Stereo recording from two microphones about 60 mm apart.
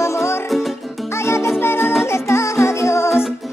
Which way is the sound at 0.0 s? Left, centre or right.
Left.